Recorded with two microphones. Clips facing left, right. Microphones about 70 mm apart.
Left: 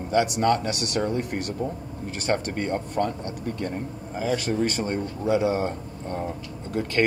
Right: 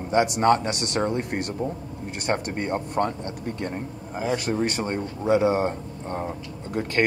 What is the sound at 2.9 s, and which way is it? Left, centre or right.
Speech, right.